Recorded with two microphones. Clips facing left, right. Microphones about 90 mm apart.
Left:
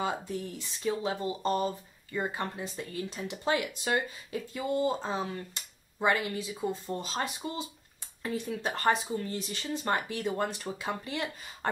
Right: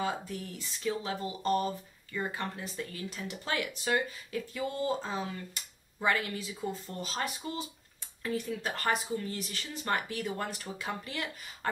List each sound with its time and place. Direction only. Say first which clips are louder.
0.0 s speech: left 2 dB; 25° left (ahead or behind)